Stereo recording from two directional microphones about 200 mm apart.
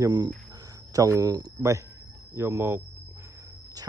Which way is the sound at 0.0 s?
20° right (ahead or behind).